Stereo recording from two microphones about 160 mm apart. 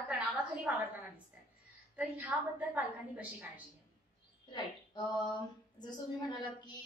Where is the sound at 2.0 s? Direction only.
10° right (ahead or behind).